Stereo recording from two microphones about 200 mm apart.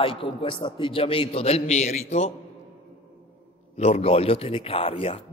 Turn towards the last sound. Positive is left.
turn(degrees=30)  # may be behind; listen again after turning